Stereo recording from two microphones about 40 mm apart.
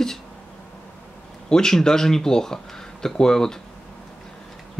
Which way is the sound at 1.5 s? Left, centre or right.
Centre.